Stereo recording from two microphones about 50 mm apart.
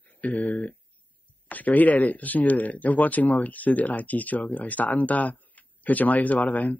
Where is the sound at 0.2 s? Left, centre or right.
Left.